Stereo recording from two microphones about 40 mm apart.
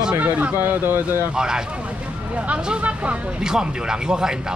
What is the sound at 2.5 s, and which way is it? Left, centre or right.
Speech, right.